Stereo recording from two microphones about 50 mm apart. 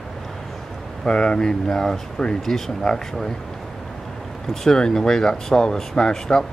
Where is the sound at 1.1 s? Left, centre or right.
Centre.